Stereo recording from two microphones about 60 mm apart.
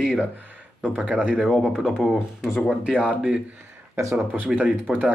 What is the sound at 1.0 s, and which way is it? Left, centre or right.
Speech, right.